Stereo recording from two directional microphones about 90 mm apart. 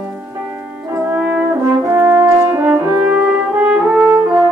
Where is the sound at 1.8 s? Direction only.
35° right (ahead or behind).